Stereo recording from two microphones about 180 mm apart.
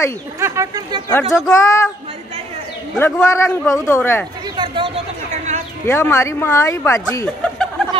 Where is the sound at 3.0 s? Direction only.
15° left (ahead or behind).